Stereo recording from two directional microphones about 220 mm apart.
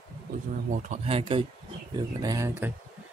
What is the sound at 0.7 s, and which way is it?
Speech, 35° right (ahead or behind).